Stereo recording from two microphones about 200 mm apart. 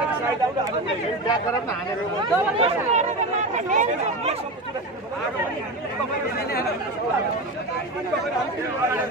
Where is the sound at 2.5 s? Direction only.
30° right (ahead or behind).